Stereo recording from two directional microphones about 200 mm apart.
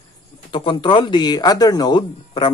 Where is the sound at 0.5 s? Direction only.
25° left (ahead or behind).